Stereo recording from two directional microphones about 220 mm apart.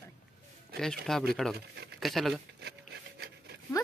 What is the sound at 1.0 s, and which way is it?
Speech, centre (ahead or behind).